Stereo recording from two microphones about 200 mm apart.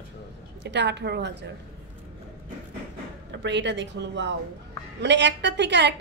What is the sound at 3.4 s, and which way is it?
A woman's voice, 60° right (ahead or behind).